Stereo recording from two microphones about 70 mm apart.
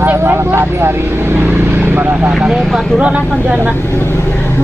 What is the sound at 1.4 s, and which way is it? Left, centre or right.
Vehicle, right.